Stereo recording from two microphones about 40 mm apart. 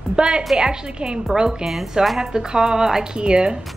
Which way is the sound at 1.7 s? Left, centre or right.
Centre.